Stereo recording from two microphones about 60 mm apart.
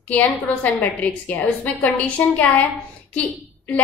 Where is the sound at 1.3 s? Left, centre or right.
Left.